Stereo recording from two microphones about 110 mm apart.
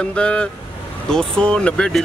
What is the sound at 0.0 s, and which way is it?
Speech, 10° left (ahead or behind).